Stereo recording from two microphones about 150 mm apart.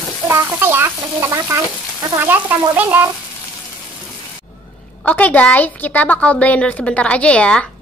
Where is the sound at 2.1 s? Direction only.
15° right (ahead or behind).